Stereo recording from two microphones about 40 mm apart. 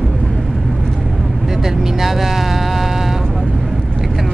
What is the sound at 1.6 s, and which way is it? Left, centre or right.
Speech, centre.